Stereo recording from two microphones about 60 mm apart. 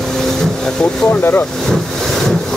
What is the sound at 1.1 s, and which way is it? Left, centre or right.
Speech, left.